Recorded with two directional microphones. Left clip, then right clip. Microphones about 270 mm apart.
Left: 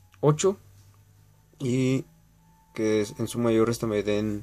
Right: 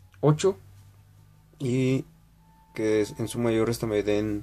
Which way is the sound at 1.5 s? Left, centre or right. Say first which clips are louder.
Even; centre.